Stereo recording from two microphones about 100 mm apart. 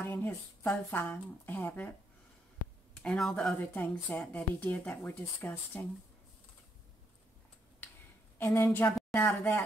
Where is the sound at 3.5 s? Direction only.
20° left (ahead or behind).